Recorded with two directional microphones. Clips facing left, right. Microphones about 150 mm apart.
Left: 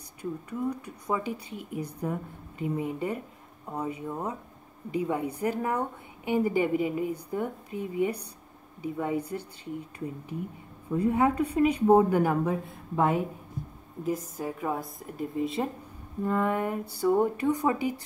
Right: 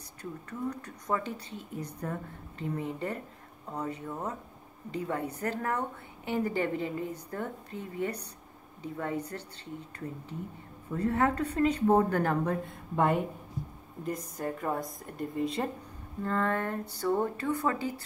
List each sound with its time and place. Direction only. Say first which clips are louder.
0.2 s a woman's voice: left 5 dB; 10° left (ahead or behind)
10.9 s a woman's voice: left 3 dB; 10° left (ahead or behind)
16.2 s a woman's voice: left 3 dB; 15° left (ahead or behind)